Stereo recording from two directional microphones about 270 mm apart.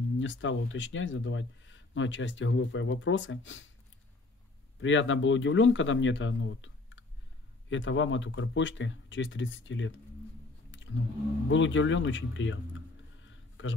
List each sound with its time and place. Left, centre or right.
0.2 s speech: left
4.7 s speech: left
11.4 s speech: left
13.2 s a sound: left